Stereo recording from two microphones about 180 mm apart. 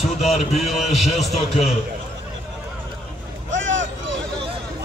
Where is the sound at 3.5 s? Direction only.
90° right.